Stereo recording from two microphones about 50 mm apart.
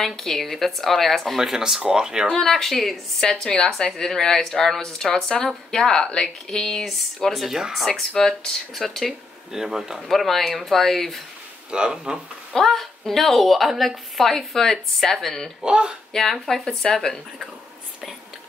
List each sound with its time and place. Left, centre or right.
0.0 s a woman's voice: centre
1.4 s speech: centre
2.3 s speech: centre
7.3 s a woman's voice: centre
8.1 s speech: centre
9.5 s speech: centre
10.0 s a woman's voice: centre
11.7 s speech: centre
12.5 s a woman's voice: centre
15.6 s speech: centre
16.1 s speech: centre